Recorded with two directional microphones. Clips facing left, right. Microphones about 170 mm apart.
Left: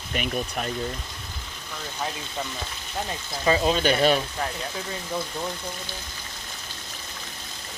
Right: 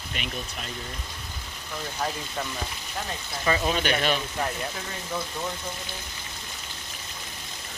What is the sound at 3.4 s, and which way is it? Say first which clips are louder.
Speech: left 4 dB; 25° left (ahead or behind).